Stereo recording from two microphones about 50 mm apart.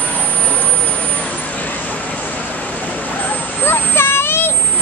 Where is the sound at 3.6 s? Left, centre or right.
Left.